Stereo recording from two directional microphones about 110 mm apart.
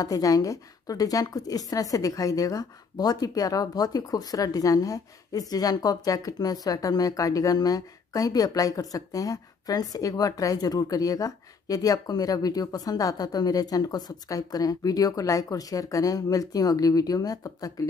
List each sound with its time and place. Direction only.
0.0 s a woman's voice: 30° left (ahead or behind)